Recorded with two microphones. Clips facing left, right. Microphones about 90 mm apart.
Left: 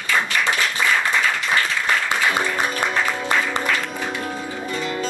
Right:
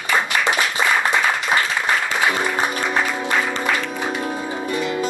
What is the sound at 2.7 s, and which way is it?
Music, 15° right (ahead or behind).